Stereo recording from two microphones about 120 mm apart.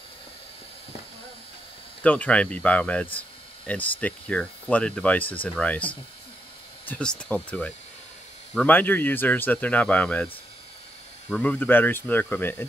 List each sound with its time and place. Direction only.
2.0 s speech: 10° left (ahead or behind)